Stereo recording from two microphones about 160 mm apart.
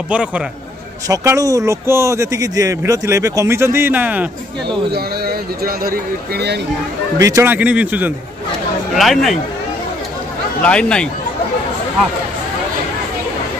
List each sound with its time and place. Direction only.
0.1 s a man's voice: 5° right (ahead or behind)
1.0 s speech: 20° right (ahead or behind)
4.9 s speech: 70° right (ahead or behind)
7.2 s a man's voice: 20° right (ahead or behind); by 9.4 s centre (ahead or behind)
10.6 s speech: 5° left (ahead or behind)